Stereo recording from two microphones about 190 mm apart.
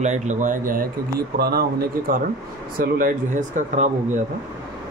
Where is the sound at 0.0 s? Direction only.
40° right (ahead or behind).